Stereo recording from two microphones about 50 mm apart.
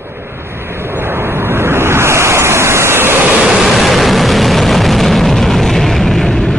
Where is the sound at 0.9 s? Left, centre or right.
Right.